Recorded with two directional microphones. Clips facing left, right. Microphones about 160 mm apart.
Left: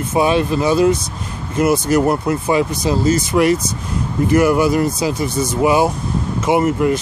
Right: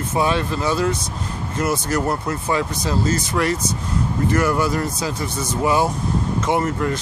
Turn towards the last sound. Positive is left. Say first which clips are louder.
# left 6 dB
turn(degrees=10)  # may be behind; listen again after turning